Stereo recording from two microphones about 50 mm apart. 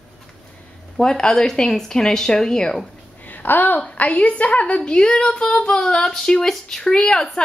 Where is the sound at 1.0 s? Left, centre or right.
Centre.